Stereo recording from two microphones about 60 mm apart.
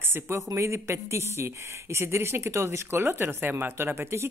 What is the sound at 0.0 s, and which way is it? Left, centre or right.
Speech, right.